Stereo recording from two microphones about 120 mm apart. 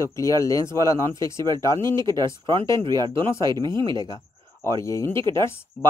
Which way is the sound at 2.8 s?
40° right (ahead or behind).